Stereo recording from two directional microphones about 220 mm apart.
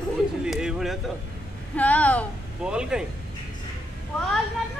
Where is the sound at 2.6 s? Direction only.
5° right (ahead or behind).